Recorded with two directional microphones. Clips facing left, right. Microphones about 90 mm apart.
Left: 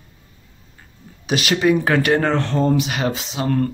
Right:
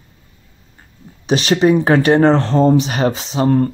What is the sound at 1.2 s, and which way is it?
Speech, 35° right (ahead or behind).